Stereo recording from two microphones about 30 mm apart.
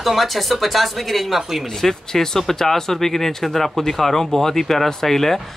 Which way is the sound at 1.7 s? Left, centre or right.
Centre.